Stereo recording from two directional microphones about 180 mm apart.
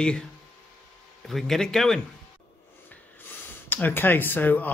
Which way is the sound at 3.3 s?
10° left (ahead or behind).